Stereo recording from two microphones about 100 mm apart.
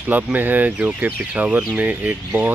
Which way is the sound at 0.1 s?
20° right (ahead or behind).